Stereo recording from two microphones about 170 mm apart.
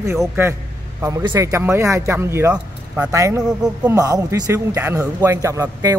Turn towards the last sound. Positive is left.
turn(degrees=-15)  # may be behind; listen again after turning